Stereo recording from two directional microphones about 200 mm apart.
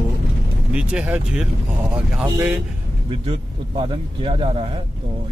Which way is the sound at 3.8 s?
25° right (ahead or behind).